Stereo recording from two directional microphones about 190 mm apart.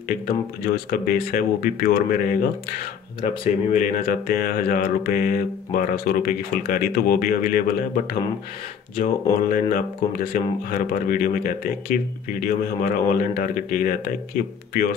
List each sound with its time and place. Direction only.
0.7 s speech: 50° left (ahead or behind)
3.7 s speech: 45° left (ahead or behind)